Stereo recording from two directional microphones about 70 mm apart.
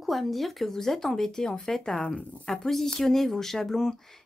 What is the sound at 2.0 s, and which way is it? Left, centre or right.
A woman's voice, centre.